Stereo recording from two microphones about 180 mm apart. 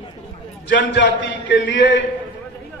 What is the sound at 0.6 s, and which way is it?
A man's voice, 85° left.